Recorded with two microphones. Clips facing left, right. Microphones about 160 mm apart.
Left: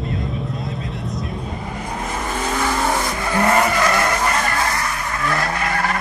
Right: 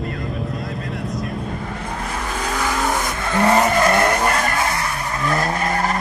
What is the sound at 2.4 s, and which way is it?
Vehicle, centre (ahead or behind).